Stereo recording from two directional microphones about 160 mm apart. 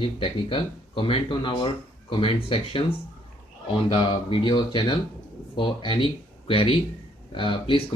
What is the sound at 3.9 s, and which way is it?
Speech, 30° left (ahead or behind).